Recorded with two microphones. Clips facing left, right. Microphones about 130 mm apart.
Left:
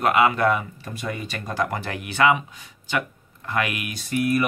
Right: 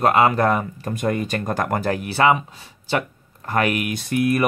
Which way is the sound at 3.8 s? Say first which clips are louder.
Right 3 dB; 55° right (ahead or behind).